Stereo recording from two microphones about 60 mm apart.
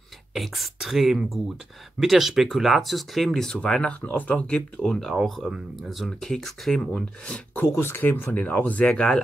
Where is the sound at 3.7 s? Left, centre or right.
Centre.